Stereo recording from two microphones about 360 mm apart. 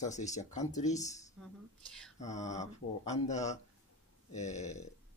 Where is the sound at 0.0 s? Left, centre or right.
Centre.